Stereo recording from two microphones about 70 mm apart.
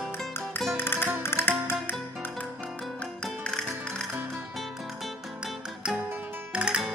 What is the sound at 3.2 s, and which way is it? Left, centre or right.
Music, centre.